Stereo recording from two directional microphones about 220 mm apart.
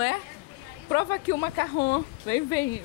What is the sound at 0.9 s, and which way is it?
Speech, 15° left (ahead or behind).